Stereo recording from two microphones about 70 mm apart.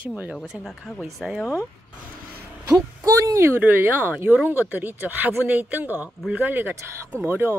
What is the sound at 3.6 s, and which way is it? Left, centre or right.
Speech, right.